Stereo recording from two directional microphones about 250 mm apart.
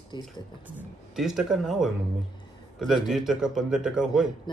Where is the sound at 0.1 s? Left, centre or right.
Centre.